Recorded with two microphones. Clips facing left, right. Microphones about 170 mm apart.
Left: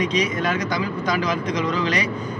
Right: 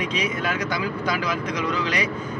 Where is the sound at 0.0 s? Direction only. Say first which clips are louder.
Left 4 dB; 10° right (ahead or behind).